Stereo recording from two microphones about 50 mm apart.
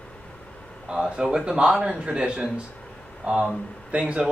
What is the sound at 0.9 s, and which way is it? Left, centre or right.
Speech, centre.